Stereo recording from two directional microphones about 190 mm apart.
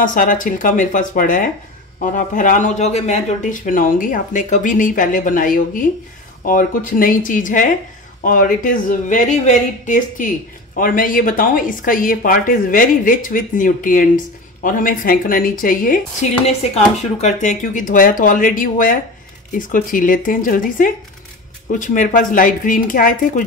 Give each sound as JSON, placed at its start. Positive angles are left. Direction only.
{"t": 0.0, "sound": "speech", "side_deg": 45}